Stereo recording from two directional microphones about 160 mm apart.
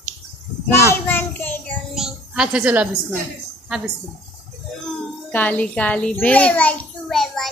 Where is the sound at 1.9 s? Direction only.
5° right (ahead or behind).